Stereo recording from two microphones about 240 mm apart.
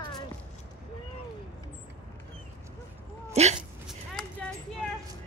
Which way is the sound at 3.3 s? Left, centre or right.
Right.